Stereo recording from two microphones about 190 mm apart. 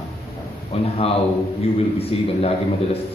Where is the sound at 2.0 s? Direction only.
30° left (ahead or behind).